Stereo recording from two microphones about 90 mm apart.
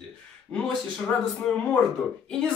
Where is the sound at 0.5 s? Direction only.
15° left (ahead or behind).